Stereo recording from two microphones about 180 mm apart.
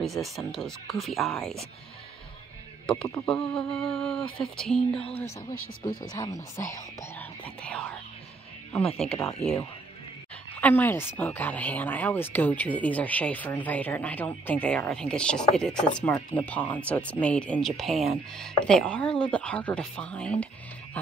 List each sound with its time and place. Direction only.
0.0 s speech: centre (ahead or behind)
2.9 s speech: 5° left (ahead or behind)
5.8 s speech: 25° left (ahead or behind); by 9.2 s 5° left (ahead or behind)
10.5 s speech: 10° left (ahead or behind)